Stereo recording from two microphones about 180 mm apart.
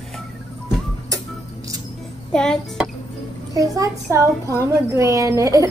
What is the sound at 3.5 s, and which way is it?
A child's voice, 20° right (ahead or behind).